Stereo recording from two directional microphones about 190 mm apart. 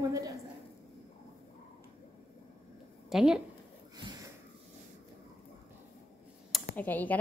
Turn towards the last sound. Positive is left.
turn(degrees=10)  # may be behind; listen again after turning